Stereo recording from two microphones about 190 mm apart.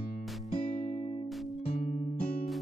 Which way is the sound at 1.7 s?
40° left (ahead or behind).